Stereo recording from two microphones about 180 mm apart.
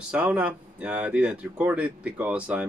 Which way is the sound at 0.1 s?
5° right (ahead or behind).